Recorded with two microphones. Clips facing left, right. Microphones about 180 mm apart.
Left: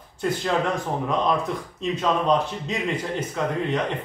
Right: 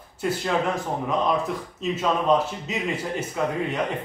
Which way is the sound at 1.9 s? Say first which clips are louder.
Even; 5° right (ahead or behind).